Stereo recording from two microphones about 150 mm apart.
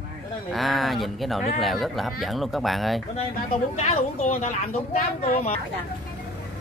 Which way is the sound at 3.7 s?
50° left (ahead or behind).